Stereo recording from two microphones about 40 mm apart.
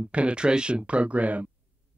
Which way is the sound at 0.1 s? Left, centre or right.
Right.